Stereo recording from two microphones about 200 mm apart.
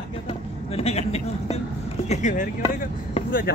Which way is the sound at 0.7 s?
30° left (ahead or behind).